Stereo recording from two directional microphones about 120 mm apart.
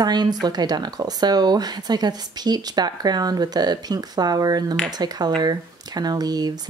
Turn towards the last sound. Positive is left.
turn(degrees=-35)  # may be behind; listen again after turning